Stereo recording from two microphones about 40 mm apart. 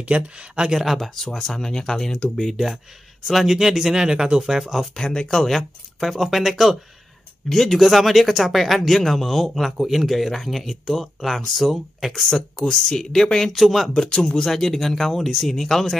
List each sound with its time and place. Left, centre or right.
0.0 s speech: right
0.9 s speech: centre
2.5 s speech: centre
4.7 s speech: centre
13.9 s speech: centre